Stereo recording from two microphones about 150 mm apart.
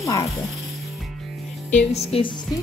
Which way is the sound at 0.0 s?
25° left (ahead or behind).